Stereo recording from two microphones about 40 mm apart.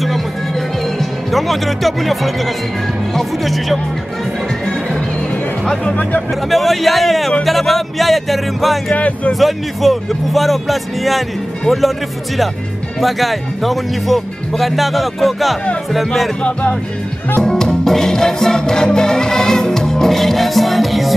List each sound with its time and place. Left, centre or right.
0.9 s speech: centre
6.5 s speech: centre
8.9 s speech: left
9.3 s speech: centre
13.0 s speech: centre
17.4 s music: centre